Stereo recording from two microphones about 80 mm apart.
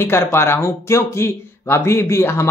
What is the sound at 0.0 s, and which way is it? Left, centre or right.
Speech, left.